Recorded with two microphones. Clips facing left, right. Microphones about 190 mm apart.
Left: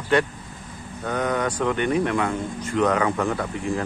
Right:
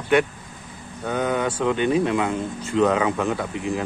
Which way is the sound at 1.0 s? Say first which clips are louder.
Right 1 dB; 20° right (ahead or behind).